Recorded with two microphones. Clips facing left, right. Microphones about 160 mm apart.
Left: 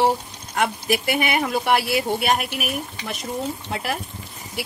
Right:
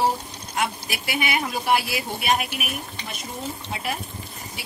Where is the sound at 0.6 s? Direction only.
50° left (ahead or behind).